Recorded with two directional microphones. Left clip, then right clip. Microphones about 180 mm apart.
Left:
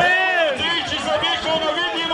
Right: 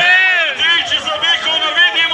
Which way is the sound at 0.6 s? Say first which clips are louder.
Right 8 dB; 25° left (ahead or behind).